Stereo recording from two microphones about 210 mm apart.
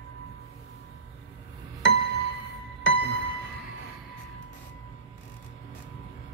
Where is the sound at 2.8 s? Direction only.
60° left (ahead or behind).